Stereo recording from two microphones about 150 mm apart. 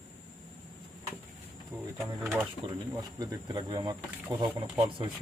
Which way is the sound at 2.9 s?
25° right (ahead or behind).